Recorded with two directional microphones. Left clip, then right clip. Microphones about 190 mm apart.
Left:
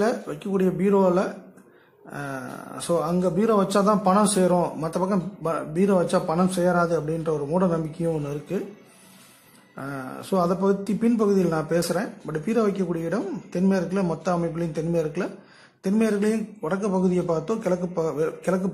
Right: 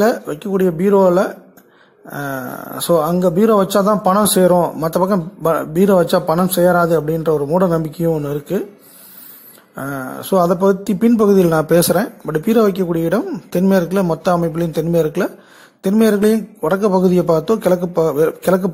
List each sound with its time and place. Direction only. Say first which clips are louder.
0.0 s a man's voice: right 9 dB; 30° right (ahead or behind)
9.8 s a man's voice: right 9 dB; 30° right (ahead or behind)